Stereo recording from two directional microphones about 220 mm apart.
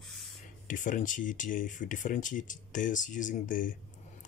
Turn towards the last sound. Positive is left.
turn(degrees=35)  # may be behind; listen again after turning